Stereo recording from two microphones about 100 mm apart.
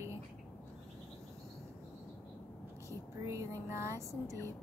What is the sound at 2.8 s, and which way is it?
Speech, 30° right (ahead or behind).